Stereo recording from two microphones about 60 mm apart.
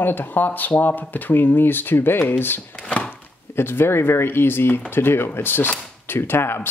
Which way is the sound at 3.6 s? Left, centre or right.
Left.